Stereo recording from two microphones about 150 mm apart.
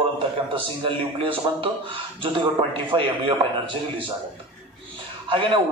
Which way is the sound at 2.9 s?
35° right (ahead or behind).